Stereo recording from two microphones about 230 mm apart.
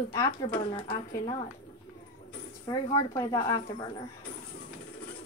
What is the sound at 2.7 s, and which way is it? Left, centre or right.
Speech, centre.